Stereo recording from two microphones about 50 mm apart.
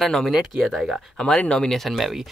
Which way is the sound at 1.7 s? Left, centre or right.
Centre.